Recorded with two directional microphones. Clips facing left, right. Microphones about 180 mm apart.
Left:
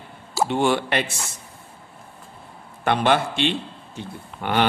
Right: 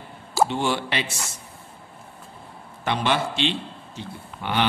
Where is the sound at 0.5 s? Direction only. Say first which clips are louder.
Left 4 dB; 55° left (ahead or behind).